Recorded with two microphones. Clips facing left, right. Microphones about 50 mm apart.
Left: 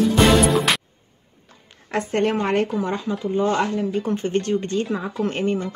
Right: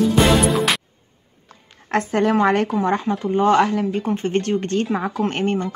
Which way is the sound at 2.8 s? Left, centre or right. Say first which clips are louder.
Right 4 dB; right.